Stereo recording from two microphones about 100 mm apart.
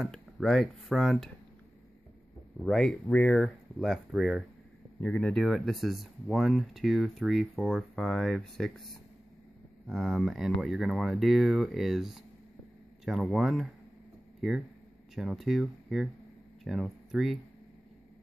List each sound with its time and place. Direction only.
0.0 s speech: 5° left (ahead or behind)
2.6 s speech: 5° left (ahead or behind)
3.1 s speech: 15° left (ahead or behind)
3.8 s speech: centre (ahead or behind)
7.9 s speech: 5° left (ahead or behind)